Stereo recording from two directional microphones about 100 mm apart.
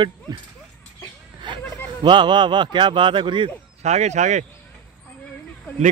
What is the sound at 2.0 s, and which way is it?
Speech, 50° right (ahead or behind).